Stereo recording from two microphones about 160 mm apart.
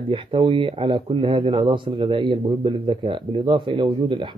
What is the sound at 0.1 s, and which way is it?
Speech, 35° right (ahead or behind).